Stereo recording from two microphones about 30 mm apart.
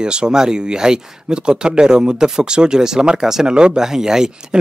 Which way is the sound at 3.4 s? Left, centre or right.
Right.